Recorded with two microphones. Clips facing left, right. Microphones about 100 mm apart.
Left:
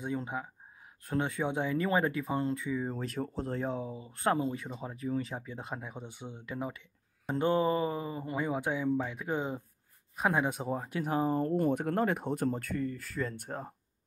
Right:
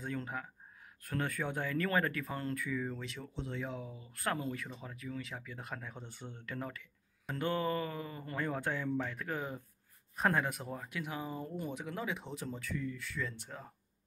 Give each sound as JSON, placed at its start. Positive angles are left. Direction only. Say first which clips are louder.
{"t": 0.0, "sound": "speech", "louder": "left 5 dB", "side_deg": 20}
{"t": 2.9, "sound": "speech", "louder": "left 8 dB", "side_deg": 40}
{"t": 5.9, "sound": "speech", "louder": "left 4 dB", "side_deg": 10}
{"t": 6.8, "sound": "speech", "louder": "right 2 dB", "side_deg": 30}
{"t": 11.4, "sound": "speech", "louder": "left 12 dB", "side_deg": 60}